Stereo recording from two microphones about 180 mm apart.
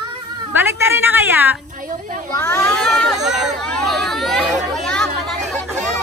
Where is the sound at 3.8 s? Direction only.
Centre (ahead or behind).